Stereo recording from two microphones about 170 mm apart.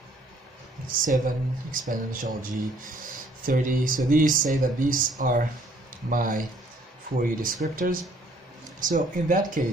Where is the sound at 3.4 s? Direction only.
55° right (ahead or behind).